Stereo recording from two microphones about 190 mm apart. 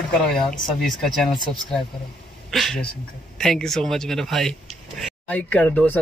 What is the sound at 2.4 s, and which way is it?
Speech, centre (ahead or behind).